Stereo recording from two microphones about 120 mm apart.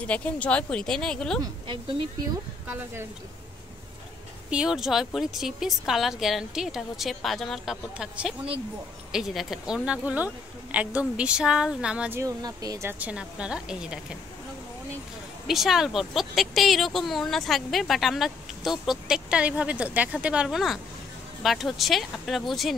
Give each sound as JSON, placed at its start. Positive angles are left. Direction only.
{"t": 0.0, "sound": "speech", "side_deg": 10}
{"t": 2.7, "sound": "speech", "side_deg": -20}
{"t": 4.5, "sound": "speech", "side_deg": -5}
{"t": 12.1, "sound": "speech", "side_deg": -25}
{"t": 13.0, "sound": "speech", "side_deg": -10}
{"t": 15.4, "sound": "speech", "side_deg": 0}